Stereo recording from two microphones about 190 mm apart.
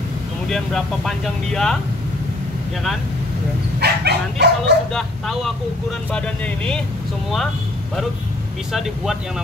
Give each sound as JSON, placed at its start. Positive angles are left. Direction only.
{"t": 0.5, "sound": "speech", "side_deg": 0}
{"t": 3.8, "sound": "speech", "side_deg": -60}
{"t": 4.9, "sound": "speech", "side_deg": 0}
{"t": 8.7, "sound": "speech", "side_deg": 0}